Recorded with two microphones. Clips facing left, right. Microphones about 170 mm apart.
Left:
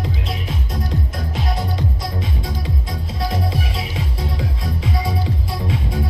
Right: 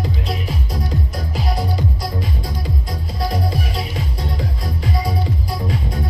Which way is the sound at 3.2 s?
Centre (ahead or behind).